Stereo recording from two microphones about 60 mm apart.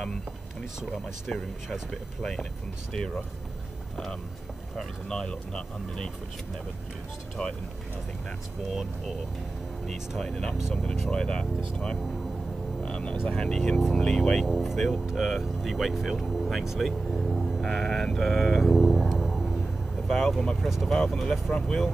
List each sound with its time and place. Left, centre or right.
3.9 s speech: centre
9.8 s speech: centre
13.6 s speech: centre
13.9 s speech: centre
14.4 s speech: centre
17.6 s sheep: centre
19.0 s music: centre
20.1 s speech: centre